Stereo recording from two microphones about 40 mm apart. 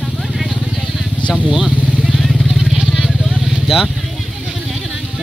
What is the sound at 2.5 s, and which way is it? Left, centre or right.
Vehicle, centre.